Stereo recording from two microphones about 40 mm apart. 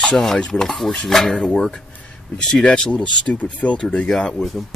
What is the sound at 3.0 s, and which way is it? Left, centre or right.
Speech, left.